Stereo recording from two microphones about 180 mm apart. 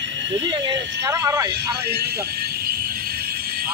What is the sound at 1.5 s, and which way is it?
Speech, 65° right (ahead or behind).